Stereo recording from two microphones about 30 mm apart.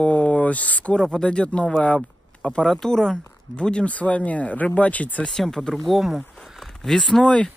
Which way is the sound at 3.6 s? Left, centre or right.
Left.